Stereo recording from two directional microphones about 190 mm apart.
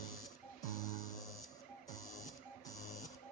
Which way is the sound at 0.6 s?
20° left (ahead or behind).